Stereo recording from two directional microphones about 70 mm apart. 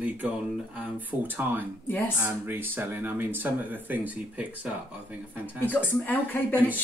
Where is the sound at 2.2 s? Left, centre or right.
Right.